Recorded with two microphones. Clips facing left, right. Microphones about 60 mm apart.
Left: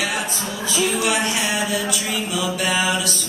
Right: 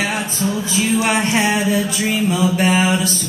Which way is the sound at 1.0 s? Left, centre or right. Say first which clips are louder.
Right 4 dB; right.